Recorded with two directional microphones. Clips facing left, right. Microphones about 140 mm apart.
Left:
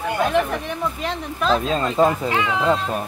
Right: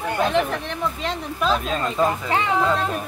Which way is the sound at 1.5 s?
25° left (ahead or behind).